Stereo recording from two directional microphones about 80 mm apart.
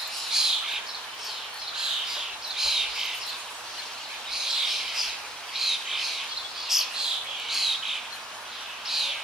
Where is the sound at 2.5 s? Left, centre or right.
Centre.